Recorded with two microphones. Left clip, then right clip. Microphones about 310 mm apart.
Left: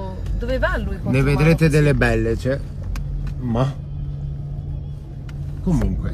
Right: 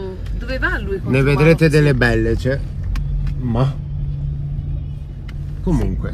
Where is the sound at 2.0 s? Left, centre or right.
Right.